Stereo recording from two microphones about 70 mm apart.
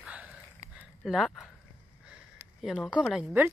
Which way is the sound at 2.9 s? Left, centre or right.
Centre.